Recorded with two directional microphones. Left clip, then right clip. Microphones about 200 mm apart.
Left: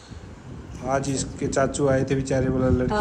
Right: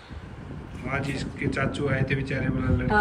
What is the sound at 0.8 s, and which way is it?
A man's voice, 15° left (ahead or behind).